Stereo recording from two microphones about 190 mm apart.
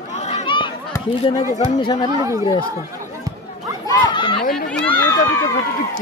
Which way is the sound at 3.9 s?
25° left (ahead or behind).